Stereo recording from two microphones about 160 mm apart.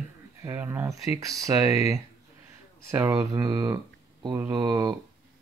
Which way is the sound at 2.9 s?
15° right (ahead or behind).